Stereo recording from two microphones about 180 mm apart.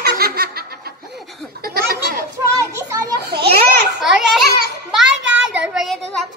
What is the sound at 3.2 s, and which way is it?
Speech, 60° right (ahead or behind).